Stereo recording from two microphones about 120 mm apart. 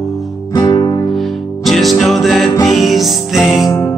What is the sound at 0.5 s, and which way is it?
Music, 35° left (ahead or behind).